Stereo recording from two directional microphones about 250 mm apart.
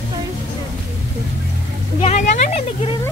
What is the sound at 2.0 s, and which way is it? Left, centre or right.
Speech, left.